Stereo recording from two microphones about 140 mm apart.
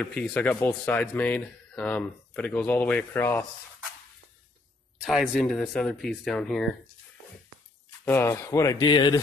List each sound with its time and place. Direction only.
0.0 s speech: 5° left (ahead or behind)
5.0 s speech: centre (ahead or behind)
8.0 s speech: 15° left (ahead or behind); by 9.2 s 35° left (ahead or behind)